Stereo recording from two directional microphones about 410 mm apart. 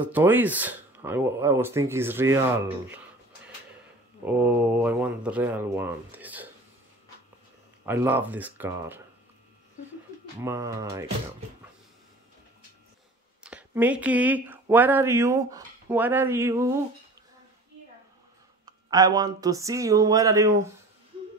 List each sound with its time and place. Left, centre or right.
0.0 s speech: centre
4.3 s speech: centre
7.8 s speech: centre
10.4 s speech: centre
13.4 s speech: centre
18.7 s speech: centre